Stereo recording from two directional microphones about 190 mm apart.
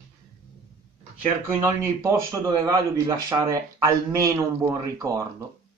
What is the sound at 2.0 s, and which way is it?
Speech, 15° right (ahead or behind).